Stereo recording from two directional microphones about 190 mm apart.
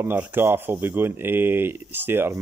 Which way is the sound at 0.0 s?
10° right (ahead or behind).